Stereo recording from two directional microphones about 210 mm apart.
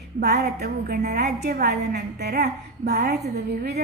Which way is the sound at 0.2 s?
50° right (ahead or behind).